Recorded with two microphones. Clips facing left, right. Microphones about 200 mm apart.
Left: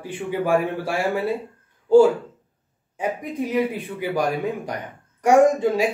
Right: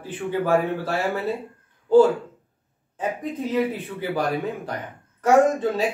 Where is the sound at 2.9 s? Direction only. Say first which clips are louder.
Left 1 dB; 10° left (ahead or behind).